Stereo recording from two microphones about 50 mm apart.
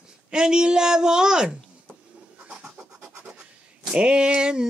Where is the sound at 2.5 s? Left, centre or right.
Centre.